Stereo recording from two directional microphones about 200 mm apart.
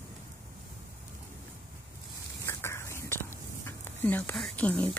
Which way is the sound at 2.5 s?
15° left (ahead or behind).